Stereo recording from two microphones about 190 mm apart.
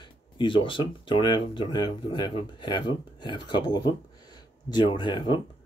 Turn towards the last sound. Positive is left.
turn(degrees=25)  # may be behind; listen again after turning